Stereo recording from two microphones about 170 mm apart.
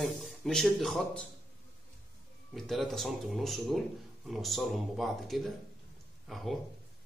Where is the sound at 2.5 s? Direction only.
Centre (ahead or behind).